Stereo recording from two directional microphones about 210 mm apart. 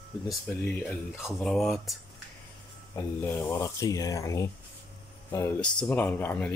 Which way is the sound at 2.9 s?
10° left (ahead or behind).